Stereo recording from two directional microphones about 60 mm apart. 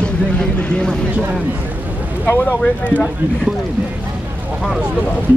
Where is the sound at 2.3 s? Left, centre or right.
Left.